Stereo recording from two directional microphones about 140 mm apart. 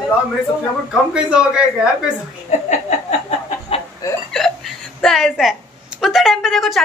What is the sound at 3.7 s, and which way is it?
Chicken, 40° left (ahead or behind).